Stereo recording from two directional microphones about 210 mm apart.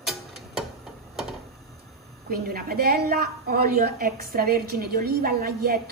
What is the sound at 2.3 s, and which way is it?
A woman's voice, 45° right (ahead or behind).